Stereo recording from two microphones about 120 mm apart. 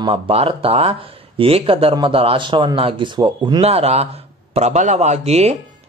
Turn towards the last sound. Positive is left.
turn(degrees=-65)  # may be behind; listen again after turning